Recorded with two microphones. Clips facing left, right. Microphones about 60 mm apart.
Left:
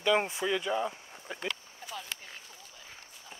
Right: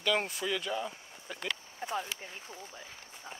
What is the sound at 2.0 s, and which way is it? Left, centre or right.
Speech, right.